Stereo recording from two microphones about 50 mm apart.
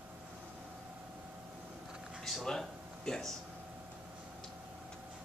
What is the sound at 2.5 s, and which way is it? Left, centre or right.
Speech, centre.